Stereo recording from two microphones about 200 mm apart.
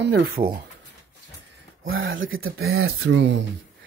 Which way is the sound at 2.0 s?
80° right.